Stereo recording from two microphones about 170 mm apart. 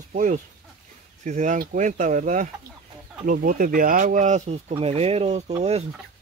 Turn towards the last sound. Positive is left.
turn(degrees=-40)  # may be behind; listen again after turning